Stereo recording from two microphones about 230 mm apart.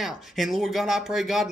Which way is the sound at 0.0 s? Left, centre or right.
Centre.